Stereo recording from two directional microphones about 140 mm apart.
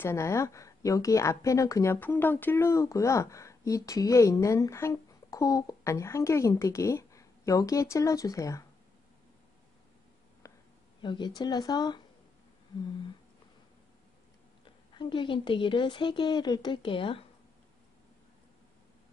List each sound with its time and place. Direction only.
0.0 s a woman's voice: 20° left (ahead or behind)
10.4 s a sound: 20° left (ahead or behind)
11.0 s speech: 35° left (ahead or behind)
15.0 s speech: 35° left (ahead or behind)